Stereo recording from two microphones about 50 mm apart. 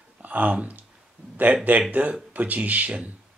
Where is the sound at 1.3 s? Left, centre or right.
Right.